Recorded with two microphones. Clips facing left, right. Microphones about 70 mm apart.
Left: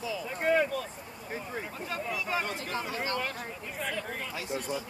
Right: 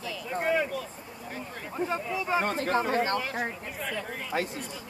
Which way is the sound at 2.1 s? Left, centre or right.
Right.